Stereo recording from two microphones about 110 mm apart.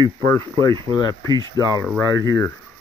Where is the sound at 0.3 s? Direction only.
25° left (ahead or behind).